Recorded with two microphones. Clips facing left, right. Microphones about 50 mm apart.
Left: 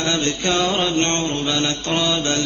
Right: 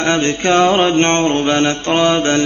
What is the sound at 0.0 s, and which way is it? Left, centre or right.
Mantra, right.